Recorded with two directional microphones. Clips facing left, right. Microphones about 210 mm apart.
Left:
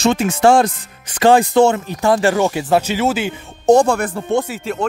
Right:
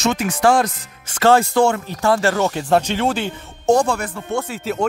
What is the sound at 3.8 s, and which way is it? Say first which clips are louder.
Speech: left 5 dB; 50° left (ahead or behind).